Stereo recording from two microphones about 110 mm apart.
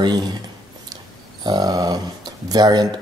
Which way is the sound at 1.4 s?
40° right (ahead or behind).